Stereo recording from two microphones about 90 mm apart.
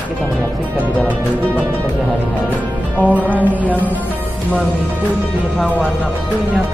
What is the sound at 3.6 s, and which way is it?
Music, 20° left (ahead or behind).